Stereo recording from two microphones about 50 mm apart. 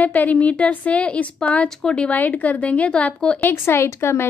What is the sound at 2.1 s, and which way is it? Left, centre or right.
A woman's voice, left.